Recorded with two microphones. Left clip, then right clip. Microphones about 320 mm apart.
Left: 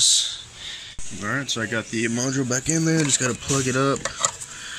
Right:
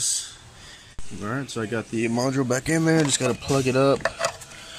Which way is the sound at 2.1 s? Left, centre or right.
Right.